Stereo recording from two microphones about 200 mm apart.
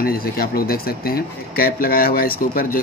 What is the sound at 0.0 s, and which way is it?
Speech, 50° left (ahead or behind).